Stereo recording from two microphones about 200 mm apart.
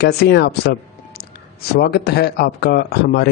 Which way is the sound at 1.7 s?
50° left (ahead or behind).